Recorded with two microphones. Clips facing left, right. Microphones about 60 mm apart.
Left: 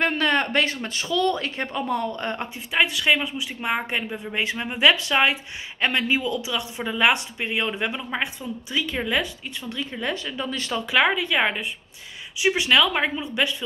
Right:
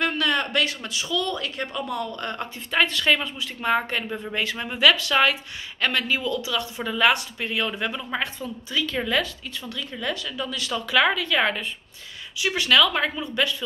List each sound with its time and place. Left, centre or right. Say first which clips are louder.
0.0 s a sound: left 2 dB; left
0.8 s speech: left 4 dB; left
2.7 s speech: even; centre